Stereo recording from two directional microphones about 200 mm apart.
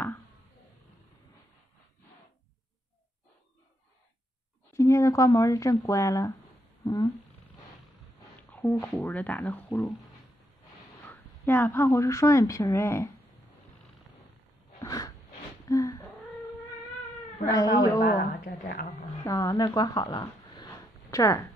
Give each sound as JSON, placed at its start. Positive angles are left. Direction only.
{"t": 4.7, "sound": "speech", "side_deg": 15}
{"t": 6.8, "sound": "cat", "side_deg": 20}
{"t": 8.5, "sound": "speech", "side_deg": 10}
{"t": 11.1, "sound": "speech", "side_deg": 10}
{"t": 14.8, "sound": "a sound", "side_deg": 15}
{"t": 18.0, "sound": "a woman's voice", "side_deg": 45}
{"t": 19.2, "sound": "speech", "side_deg": 15}